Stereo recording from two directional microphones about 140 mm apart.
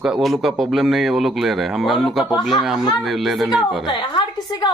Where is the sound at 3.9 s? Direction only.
30° left (ahead or behind).